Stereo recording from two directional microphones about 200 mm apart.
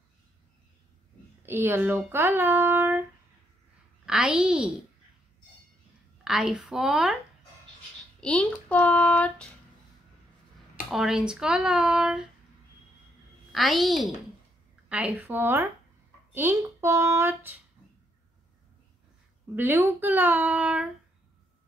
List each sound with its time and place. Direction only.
1.4 s a child's voice: 10° right (ahead or behind)
6.2 s speech: 5° right (ahead or behind)
8.2 s a child's voice: 5° left (ahead or behind)
10.9 s speech: centre (ahead or behind)
13.5 s speech: centre (ahead or behind)
19.5 s speech: 10° right (ahead or behind)